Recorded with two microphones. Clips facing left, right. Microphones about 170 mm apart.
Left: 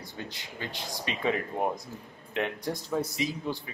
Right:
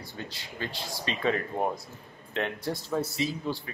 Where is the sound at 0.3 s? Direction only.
20° left (ahead or behind).